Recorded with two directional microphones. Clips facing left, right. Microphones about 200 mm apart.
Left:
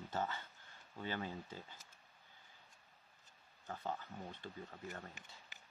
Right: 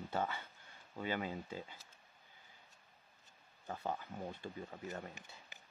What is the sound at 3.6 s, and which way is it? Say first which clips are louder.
Speech: right 3 dB; 10° right (ahead or behind).